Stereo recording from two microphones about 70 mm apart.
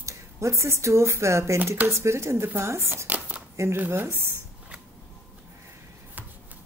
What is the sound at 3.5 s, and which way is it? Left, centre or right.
Speech, right.